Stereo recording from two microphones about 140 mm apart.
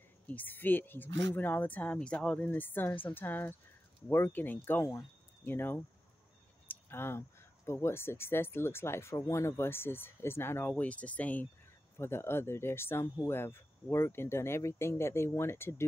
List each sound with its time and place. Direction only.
0.3 s speech: 15° left (ahead or behind)